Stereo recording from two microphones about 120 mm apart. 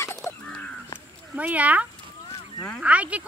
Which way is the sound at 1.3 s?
10° right (ahead or behind).